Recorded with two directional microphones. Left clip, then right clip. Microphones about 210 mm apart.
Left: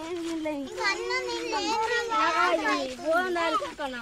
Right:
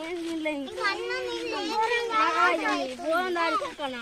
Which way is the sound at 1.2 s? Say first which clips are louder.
Left 1 dB; 25° left (ahead or behind).